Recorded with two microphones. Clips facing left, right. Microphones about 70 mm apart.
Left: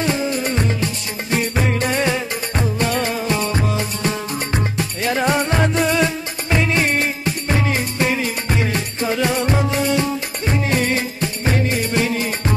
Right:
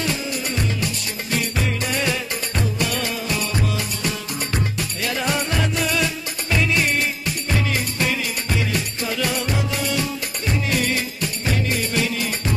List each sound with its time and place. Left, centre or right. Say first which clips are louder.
0.0 s music: left 5 dB; left